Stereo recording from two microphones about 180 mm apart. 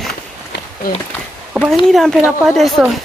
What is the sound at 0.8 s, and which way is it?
Speech, 55° left (ahead or behind).